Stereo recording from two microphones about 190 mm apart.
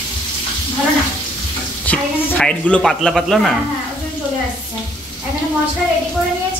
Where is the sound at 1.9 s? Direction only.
5° left (ahead or behind).